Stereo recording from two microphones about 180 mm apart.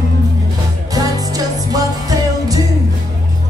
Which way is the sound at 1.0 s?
20° right (ahead or behind).